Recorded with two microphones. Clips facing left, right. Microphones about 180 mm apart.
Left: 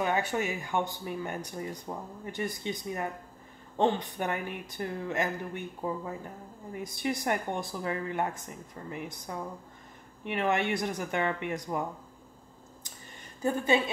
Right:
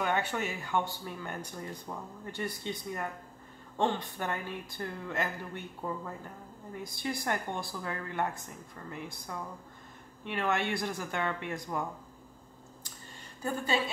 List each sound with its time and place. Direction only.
0.0 s speech: 10° left (ahead or behind)
13.4 s a woman's voice: 20° left (ahead or behind)